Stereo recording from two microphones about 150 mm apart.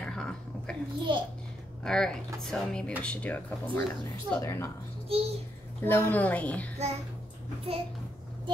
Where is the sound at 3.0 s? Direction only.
10° left (ahead or behind).